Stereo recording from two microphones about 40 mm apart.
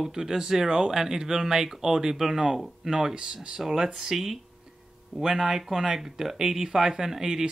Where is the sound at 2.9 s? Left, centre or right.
Centre.